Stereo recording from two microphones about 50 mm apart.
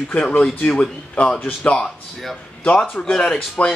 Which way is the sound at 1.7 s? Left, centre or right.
Centre.